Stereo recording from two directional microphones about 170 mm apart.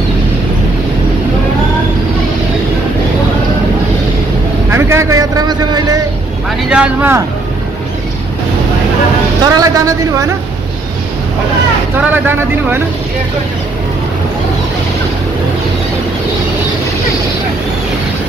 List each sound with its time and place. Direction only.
4.6 s vehicle: 15° right (ahead or behind)
6.7 s speech: 10° right (ahead or behind)
9.4 s a woman's voice: 20° right (ahead or behind)
12.0 s speech: 10° right (ahead or behind)